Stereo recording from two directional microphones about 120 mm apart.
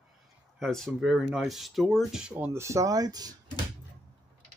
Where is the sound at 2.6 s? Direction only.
25° right (ahead or behind).